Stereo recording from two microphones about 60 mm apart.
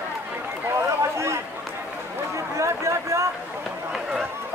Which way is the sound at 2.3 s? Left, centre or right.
Right.